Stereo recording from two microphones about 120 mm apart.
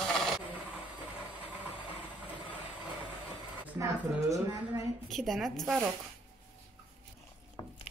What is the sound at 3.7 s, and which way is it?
A woman's voice, 25° right (ahead or behind).